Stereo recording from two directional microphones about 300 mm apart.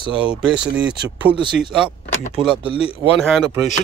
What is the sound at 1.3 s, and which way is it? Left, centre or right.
Speech, centre.